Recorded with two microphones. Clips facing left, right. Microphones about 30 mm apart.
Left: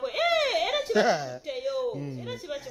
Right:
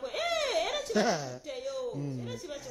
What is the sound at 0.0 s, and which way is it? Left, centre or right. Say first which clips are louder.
Speech: left 6 dB; left.